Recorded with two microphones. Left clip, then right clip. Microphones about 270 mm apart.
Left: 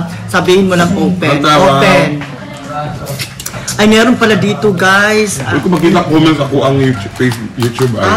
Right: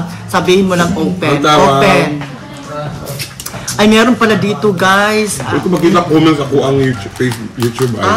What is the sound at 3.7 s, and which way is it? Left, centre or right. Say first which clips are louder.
A man's voice: left 1 dB; right.